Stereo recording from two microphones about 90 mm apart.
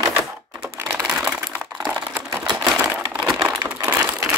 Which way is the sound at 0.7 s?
30° right (ahead or behind).